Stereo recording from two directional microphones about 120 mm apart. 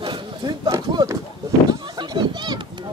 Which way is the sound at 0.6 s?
30° right (ahead or behind).